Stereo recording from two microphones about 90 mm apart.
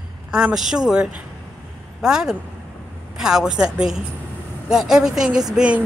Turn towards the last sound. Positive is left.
turn(degrees=-15)  # may be behind; listen again after turning